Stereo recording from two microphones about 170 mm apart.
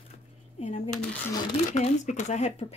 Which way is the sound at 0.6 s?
45° left (ahead or behind).